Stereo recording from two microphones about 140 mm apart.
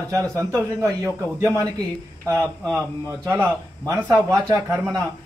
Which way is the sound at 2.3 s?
10° left (ahead or behind).